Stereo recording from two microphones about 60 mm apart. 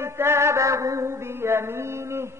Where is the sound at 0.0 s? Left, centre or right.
Right.